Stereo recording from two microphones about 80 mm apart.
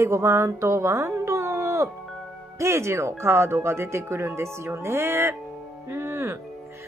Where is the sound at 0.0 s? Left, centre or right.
Right.